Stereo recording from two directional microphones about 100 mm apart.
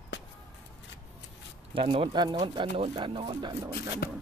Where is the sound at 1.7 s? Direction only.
65° right (ahead or behind).